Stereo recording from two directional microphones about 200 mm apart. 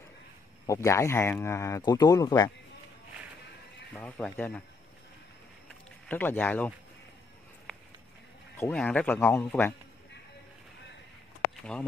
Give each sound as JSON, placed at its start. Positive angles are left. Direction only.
{"t": 0.7, "sound": "speech", "side_deg": 15}
{"t": 3.9, "sound": "speech", "side_deg": 5}
{"t": 6.0, "sound": "speech", "side_deg": 10}
{"t": 7.7, "sound": "a sound", "side_deg": 5}
{"t": 8.5, "sound": "speech", "side_deg": 10}